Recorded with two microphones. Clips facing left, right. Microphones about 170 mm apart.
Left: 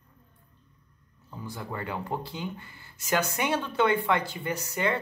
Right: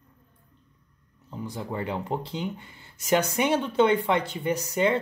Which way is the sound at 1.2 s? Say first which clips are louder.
Right 4 dB; 20° right (ahead or behind).